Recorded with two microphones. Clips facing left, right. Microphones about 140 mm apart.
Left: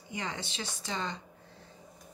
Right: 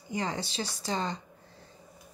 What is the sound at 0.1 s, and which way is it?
Speech, 35° right (ahead or behind).